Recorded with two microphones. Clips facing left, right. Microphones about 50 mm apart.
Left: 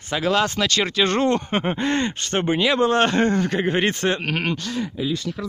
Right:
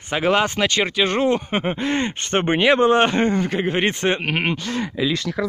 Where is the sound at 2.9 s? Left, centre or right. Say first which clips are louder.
Right 2 dB; centre.